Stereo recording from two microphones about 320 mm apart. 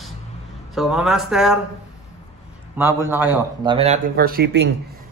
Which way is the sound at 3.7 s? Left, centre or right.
Right.